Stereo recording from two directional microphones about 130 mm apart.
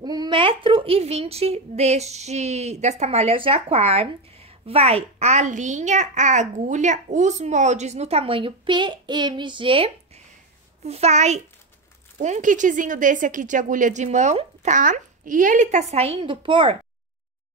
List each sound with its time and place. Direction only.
0.0 s a woman's voice: 30° right (ahead or behind)